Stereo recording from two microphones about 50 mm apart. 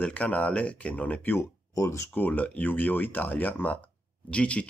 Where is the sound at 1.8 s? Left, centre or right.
Left.